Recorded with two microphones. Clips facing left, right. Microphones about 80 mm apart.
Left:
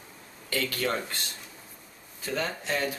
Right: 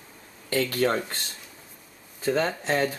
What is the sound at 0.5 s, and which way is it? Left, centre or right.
Speech, right.